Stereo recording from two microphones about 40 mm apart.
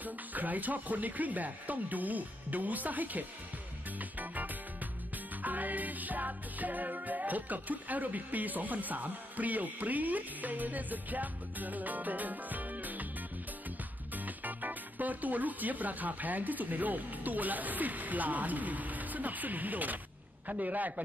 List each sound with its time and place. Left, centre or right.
0.0 s speech: right
4.0 s music: right
14.1 s a man's voice: right